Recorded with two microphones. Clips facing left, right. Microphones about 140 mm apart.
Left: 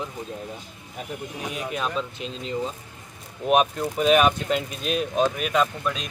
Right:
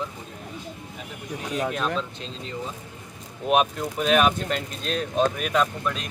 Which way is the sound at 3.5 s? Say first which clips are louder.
Left 1 dB; centre (ahead or behind).